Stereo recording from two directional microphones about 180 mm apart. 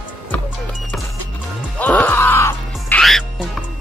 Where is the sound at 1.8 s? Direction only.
10° left (ahead or behind).